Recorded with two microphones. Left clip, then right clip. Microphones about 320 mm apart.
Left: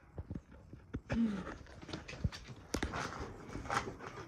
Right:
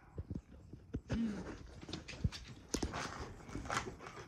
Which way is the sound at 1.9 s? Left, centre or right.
Centre.